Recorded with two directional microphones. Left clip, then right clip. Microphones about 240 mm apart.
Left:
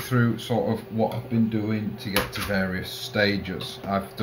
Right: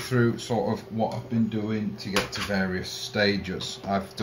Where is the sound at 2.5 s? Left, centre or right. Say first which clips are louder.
Left 1 dB; centre.